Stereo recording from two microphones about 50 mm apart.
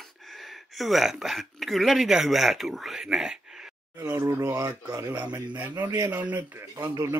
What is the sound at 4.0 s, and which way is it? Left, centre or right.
Speech, right.